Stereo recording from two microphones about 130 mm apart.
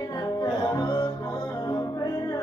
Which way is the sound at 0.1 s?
30° left (ahead or behind).